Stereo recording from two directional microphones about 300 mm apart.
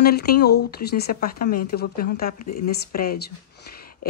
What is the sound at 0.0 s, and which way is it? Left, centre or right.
A woman's voice, left.